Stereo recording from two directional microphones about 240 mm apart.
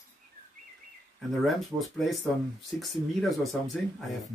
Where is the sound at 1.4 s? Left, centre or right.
Centre.